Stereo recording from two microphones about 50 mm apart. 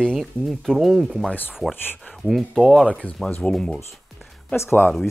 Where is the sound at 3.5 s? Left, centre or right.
Centre.